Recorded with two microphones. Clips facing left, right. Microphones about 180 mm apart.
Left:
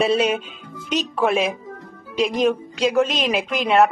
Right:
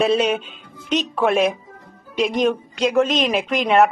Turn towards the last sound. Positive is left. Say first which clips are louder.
# right 1 dB
turn(degrees=0)  # may be behind; listen again after turning